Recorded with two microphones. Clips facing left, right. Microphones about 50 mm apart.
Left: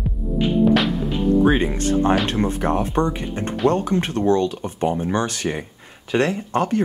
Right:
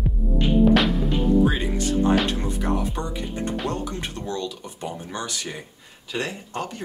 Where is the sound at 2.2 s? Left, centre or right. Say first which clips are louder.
Left 5 dB; left.